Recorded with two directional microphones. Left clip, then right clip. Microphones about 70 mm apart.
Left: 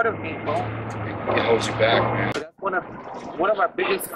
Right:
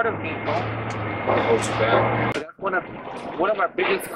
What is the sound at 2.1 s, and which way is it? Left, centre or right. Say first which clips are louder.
Speech: right 1 dB; centre.